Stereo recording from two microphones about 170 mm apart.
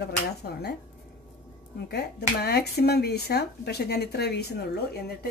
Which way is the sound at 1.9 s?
75° left (ahead or behind).